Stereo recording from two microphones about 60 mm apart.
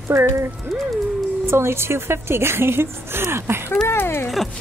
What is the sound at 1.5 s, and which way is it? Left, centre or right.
A woman's voice, right.